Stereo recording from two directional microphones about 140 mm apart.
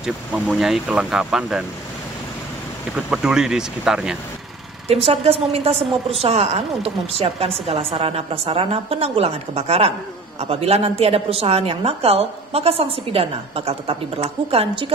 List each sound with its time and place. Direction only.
0.0 s speech: 5° right (ahead or behind)
3.1 s speech: 5° right (ahead or behind)
4.8 s a woman's voice: 45° right (ahead or behind)